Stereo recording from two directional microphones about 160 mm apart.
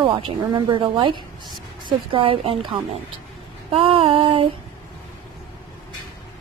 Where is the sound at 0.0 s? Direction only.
30° right (ahead or behind).